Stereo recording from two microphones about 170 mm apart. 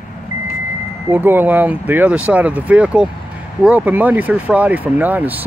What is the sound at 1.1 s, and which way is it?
Speech, 10° right (ahead or behind).